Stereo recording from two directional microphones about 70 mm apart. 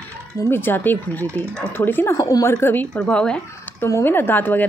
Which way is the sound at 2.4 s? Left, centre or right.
Left.